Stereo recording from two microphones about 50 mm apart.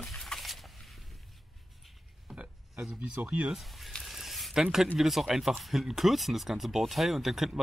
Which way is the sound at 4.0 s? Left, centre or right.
Centre.